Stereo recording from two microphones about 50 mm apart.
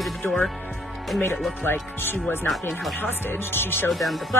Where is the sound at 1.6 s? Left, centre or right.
Left.